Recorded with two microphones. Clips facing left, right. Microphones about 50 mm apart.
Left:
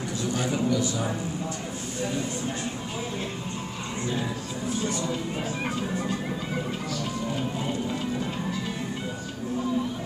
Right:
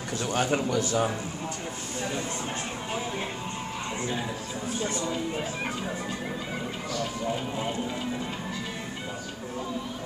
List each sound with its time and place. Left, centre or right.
0.2 s a man's voice: right